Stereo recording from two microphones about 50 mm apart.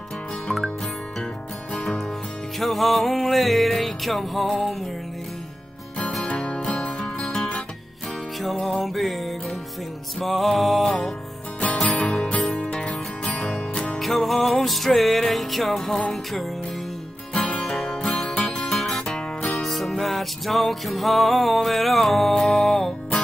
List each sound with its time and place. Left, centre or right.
1.7 s music: centre
2.6 s music: centre
6.2 s music: left
8.4 s music: centre
11.6 s music: left
13.9 s music: centre
17.3 s music: centre
17.6 s music: centre